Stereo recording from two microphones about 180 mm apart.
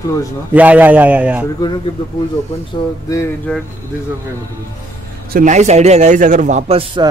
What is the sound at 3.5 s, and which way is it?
Speech, 5° left (ahead or behind).